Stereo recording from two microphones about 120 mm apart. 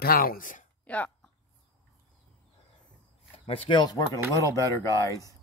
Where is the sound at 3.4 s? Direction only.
45° left (ahead or behind).